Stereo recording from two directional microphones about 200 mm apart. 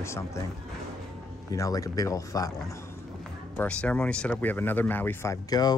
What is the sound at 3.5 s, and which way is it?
Speech, 5° left (ahead or behind).